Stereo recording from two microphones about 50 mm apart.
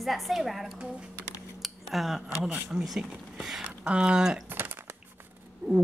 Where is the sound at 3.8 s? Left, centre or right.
Right.